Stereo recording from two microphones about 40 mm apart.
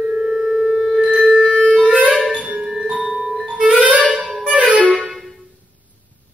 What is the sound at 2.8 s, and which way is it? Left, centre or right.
Music, right.